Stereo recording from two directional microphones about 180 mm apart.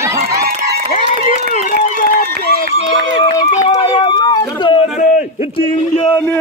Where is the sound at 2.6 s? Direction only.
30° left (ahead or behind).